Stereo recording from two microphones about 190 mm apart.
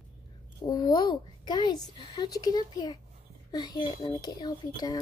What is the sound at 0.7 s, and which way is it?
A child's voice, 20° left (ahead or behind).